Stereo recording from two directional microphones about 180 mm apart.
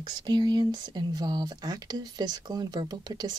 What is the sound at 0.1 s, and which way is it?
Speech, 25° right (ahead or behind).